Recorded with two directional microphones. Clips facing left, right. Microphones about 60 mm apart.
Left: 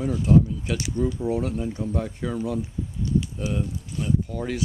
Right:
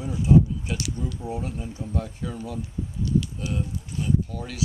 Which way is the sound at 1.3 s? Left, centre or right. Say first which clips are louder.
Left 6 dB; left.